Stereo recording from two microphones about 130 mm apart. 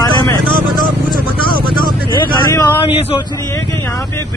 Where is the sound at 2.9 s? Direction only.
45° left (ahead or behind).